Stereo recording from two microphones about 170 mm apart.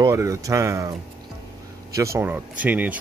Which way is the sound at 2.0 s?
15° right (ahead or behind).